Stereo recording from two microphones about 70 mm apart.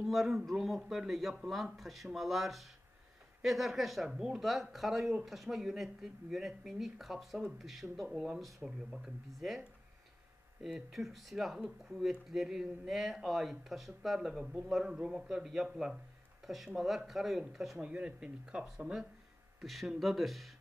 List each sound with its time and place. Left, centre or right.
0.0 s speech: centre
14.4 s a man's voice: centre
15.2 s speech: centre
17.8 s speech: centre
19.6 s speech: centre